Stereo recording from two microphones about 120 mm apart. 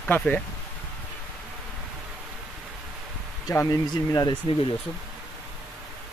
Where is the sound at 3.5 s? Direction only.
20° left (ahead or behind).